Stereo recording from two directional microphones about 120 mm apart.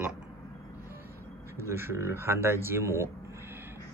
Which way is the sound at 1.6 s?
20° right (ahead or behind).